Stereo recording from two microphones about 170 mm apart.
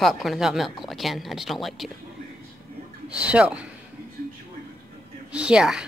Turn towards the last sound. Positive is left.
turn(degrees=-5)  # may be behind; listen again after turning